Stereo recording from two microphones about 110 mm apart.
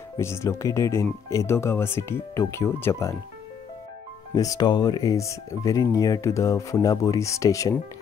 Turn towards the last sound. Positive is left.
turn(degrees=30)  # may be behind; listen again after turning